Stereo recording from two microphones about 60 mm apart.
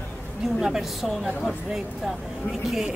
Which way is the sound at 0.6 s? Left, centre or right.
Centre.